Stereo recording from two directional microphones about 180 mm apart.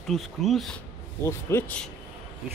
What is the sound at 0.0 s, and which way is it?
Speech, centre (ahead or behind).